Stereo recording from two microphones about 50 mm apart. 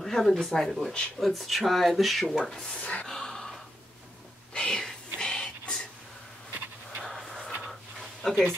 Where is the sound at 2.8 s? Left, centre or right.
Left.